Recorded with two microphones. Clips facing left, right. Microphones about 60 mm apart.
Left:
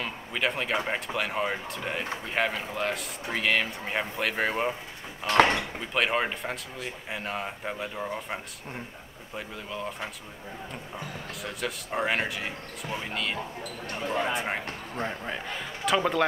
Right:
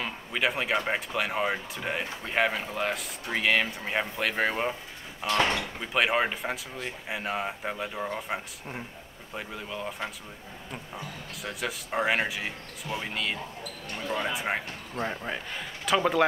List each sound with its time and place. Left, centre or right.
0.0 s a sound: centre
0.8 s speech: centre
11.4 s speech: centre
14.0 s speech: left
14.3 s speech: centre